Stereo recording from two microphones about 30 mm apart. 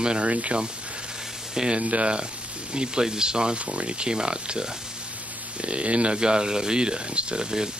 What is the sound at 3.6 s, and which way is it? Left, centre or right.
Speech, right.